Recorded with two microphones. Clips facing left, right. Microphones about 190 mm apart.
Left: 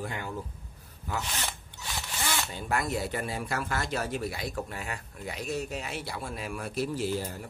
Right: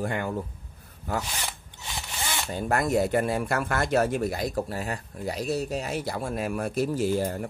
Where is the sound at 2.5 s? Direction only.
45° right (ahead or behind).